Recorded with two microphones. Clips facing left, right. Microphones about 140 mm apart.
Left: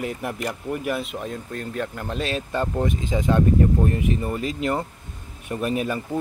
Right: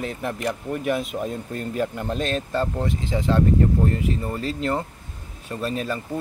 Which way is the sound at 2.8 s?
15° left (ahead or behind).